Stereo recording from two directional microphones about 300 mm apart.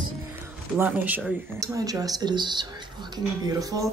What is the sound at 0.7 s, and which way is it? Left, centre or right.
A woman's voice, centre.